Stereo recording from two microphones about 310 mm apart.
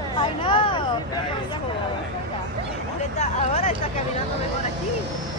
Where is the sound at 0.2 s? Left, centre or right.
Centre.